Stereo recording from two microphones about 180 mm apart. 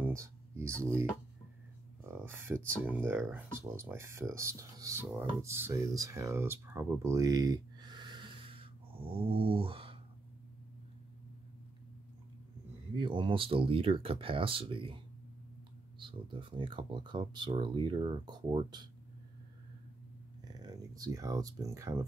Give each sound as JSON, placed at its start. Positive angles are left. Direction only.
{"t": 0.0, "sound": "a sound", "side_deg": -15}
{"t": 2.0, "sound": "speech", "side_deg": -15}
{"t": 12.9, "sound": "speech", "side_deg": -25}
{"t": 16.0, "sound": "speech", "side_deg": -25}
{"t": 20.4, "sound": "speech", "side_deg": -20}